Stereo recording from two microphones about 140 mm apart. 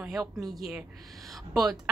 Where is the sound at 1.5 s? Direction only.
5° right (ahead or behind).